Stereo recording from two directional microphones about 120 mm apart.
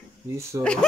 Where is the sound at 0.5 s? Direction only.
25° right (ahead or behind).